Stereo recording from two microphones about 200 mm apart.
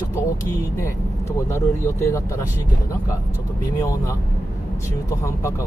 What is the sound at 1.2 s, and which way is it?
Speech, 15° left (ahead or behind).